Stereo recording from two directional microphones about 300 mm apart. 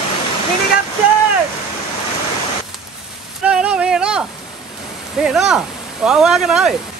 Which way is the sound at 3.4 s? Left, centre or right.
Centre.